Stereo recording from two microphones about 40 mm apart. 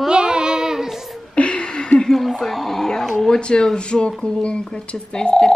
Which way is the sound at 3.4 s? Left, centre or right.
Left.